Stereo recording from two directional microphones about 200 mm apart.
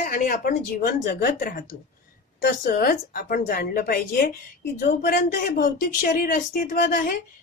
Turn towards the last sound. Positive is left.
turn(degrees=50)  # may be behind; listen again after turning